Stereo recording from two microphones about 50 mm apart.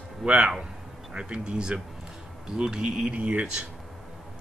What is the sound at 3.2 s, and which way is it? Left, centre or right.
Speech, right.